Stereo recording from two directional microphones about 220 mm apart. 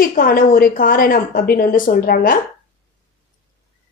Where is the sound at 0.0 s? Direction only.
40° left (ahead or behind).